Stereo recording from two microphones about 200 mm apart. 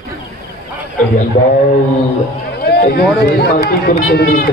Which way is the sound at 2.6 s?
50° left (ahead or behind).